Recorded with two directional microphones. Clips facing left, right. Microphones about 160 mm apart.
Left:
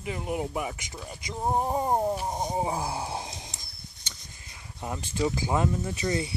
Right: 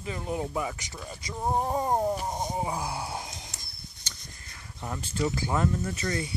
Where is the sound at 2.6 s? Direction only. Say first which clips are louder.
Left 2 dB; 30° left (ahead or behind).